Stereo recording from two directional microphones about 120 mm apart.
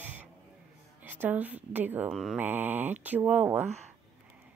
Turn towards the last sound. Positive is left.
turn(degrees=-15)  # may be behind; listen again after turning